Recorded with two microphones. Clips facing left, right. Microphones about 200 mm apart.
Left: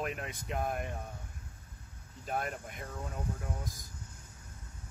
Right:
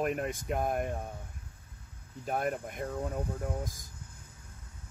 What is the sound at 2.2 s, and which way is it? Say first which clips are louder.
Speech: right 5 dB; 55° right (ahead or behind).